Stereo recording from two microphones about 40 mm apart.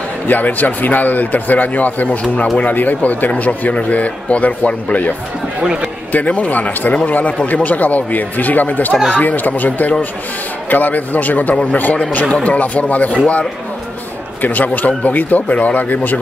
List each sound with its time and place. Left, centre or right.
0.3 s speech: left
5.6 s speech: right
6.1 s speech: left
14.4 s speech: left